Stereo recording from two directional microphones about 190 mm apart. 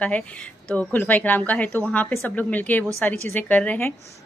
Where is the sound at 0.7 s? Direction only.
10° left (ahead or behind).